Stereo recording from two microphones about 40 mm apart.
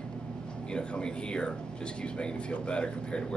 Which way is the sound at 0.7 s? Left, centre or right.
Left.